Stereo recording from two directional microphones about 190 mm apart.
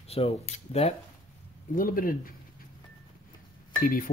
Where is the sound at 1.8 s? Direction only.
45° left (ahead or behind).